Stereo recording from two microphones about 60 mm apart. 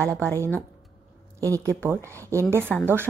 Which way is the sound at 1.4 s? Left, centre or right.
Right.